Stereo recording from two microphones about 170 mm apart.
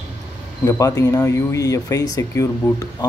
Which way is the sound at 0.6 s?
20° left (ahead or behind).